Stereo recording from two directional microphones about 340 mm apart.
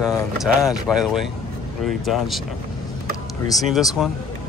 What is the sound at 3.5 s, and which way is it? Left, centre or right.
Speech, centre.